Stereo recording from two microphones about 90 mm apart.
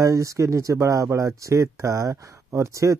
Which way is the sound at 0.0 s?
35° right (ahead or behind).